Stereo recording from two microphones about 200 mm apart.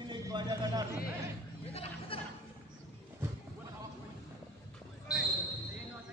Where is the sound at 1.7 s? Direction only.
30° left (ahead or behind).